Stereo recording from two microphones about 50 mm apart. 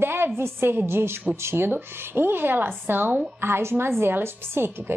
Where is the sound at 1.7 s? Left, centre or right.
Right.